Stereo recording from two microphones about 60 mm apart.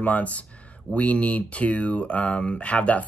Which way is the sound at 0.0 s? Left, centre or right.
Left.